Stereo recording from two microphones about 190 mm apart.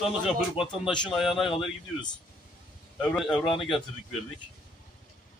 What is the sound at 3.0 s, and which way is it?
Speech, 5° left (ahead or behind).